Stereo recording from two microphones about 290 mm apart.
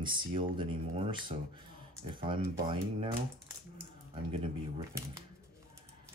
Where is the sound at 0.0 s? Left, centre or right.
Centre.